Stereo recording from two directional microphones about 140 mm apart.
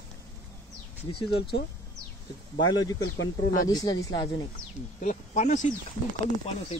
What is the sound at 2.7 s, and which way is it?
Speech, 30° left (ahead or behind).